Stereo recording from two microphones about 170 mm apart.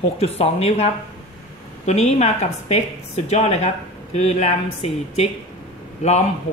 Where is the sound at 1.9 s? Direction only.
40° left (ahead or behind).